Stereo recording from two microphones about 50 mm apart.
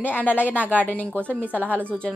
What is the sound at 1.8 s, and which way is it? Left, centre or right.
Speech, left.